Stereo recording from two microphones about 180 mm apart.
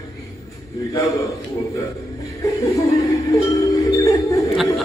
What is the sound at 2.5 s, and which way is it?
Music, 15° left (ahead or behind).